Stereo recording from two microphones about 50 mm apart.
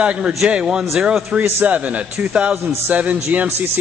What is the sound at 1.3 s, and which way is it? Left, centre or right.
Speech, right.